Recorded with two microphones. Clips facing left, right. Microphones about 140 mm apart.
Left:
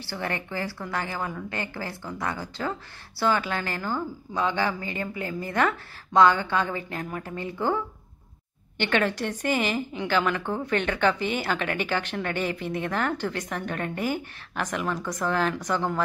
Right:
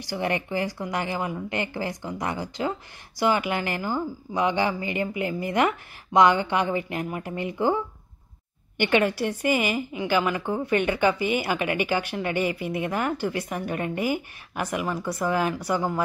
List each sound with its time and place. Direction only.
0.0 s a woman's voice: 15° right (ahead or behind)